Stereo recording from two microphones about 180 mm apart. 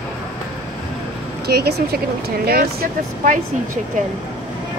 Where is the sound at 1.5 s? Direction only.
60° right (ahead or behind).